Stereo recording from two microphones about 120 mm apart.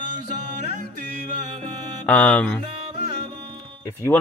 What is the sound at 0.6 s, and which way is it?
Music, 80° right.